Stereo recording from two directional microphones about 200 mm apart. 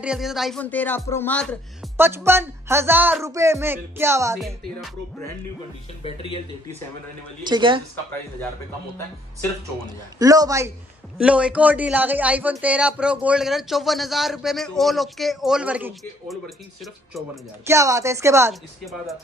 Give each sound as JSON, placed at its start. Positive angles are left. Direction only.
{"t": 0.0, "sound": "speech", "side_deg": -5}
{"t": 2.0, "sound": "speech", "side_deg": -10}
{"t": 6.0, "sound": "speech", "side_deg": 30}
{"t": 7.4, "sound": "speech", "side_deg": -25}
{"t": 10.1, "sound": "speech", "side_deg": -20}
{"t": 11.1, "sound": "a man's voice", "side_deg": -5}
{"t": 17.6, "sound": "speech", "side_deg": -15}
{"t": 18.5, "sound": "a man's voice", "side_deg": 0}